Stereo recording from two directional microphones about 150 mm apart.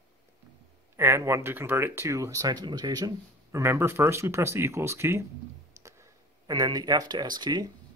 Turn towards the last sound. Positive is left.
turn(degrees=-30)  # may be behind; listen again after turning